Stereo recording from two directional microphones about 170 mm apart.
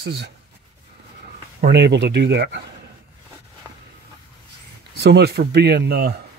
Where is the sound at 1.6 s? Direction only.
80° right.